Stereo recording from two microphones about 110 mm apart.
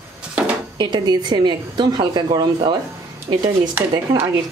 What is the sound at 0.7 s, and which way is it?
A woman's voice, 40° right (ahead or behind).